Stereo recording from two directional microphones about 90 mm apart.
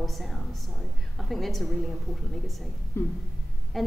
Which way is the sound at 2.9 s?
25° left (ahead or behind).